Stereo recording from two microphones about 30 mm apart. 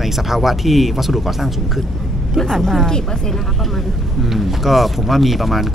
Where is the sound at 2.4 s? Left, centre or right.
Centre.